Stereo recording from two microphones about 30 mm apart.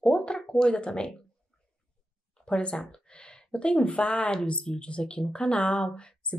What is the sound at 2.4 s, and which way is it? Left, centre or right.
Speech, left.